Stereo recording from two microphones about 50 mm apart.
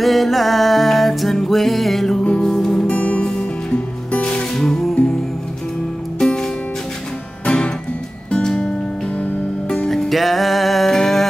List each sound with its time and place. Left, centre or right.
0.0 s music: centre
2.9 s music: left
4.6 s music: centre
6.1 s music: centre
9.8 s music: centre